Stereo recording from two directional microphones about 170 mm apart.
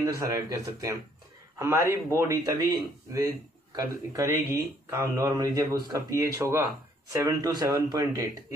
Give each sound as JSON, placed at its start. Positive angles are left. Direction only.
{"t": 0.0, "sound": "speech", "side_deg": -20}
{"t": 2.0, "sound": "speech", "side_deg": -15}